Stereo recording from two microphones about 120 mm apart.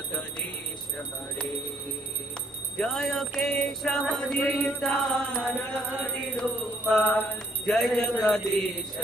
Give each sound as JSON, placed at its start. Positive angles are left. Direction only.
{"t": 2.8, "sound": "music", "side_deg": 5}
{"t": 7.0, "sound": "music", "side_deg": 15}
{"t": 7.6, "sound": "music", "side_deg": 5}